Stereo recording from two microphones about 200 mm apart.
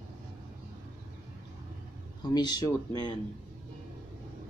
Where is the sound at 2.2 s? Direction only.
20° left (ahead or behind).